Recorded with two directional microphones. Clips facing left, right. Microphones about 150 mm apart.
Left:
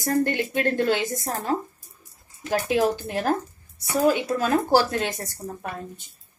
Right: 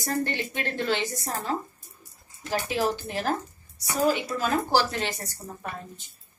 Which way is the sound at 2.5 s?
50° left (ahead or behind).